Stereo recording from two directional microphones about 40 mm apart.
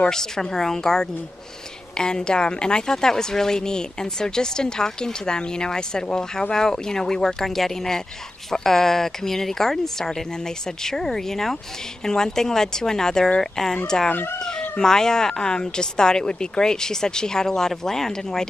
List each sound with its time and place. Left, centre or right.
0.1 s a woman's voice: centre
14.8 s a woman's voice: centre